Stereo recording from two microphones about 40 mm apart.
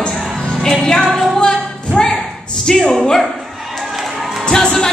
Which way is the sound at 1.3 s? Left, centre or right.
Left.